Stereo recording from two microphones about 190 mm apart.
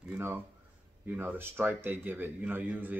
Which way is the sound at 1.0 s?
10° right (ahead or behind).